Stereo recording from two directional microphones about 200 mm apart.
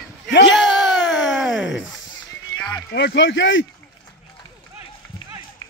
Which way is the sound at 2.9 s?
65° left (ahead or behind).